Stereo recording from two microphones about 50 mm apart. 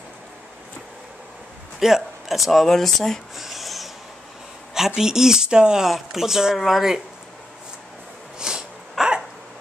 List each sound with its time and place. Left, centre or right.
1.8 s speech: centre
3.4 s printer: centre
4.7 s speech: centre
5.9 s speech: centre
8.4 s a sound: centre
9.0 s hiccup: centre